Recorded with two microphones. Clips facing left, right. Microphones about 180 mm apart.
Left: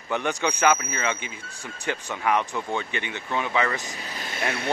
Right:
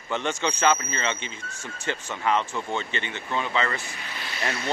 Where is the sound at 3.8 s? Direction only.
40° left (ahead or behind).